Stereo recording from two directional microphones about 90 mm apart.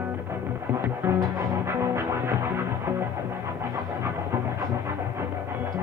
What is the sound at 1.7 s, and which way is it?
Music, 30° right (ahead or behind).